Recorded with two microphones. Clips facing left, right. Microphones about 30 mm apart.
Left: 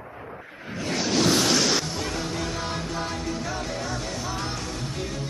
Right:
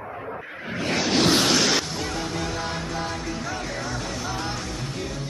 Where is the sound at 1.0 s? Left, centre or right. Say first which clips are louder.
Right 1 dB; right.